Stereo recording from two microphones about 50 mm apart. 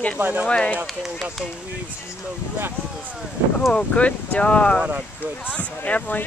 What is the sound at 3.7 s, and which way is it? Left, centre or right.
Speech, left.